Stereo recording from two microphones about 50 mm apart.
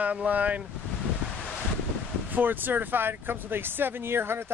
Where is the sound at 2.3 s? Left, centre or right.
Right.